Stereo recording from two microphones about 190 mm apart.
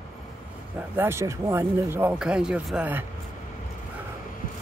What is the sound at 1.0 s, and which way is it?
Speech, 15° right (ahead or behind).